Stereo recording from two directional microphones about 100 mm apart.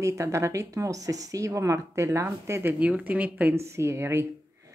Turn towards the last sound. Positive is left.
turn(degrees=-25)  # may be behind; listen again after turning